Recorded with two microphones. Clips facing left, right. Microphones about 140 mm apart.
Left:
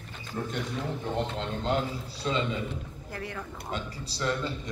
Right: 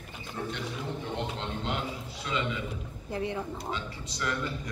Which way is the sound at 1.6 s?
35° left (ahead or behind).